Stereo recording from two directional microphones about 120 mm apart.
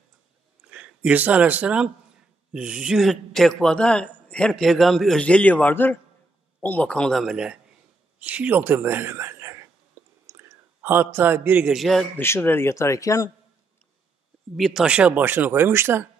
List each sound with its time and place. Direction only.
0.7 s a man's voice: 10° right (ahead or behind)
10.2 s a sound: 25° right (ahead or behind)
11.7 s a man's voice: centre (ahead or behind)
12.2 s speech: 20° left (ahead or behind)
14.6 s speech: 5° right (ahead or behind); by 16.1 s 20° right (ahead or behind)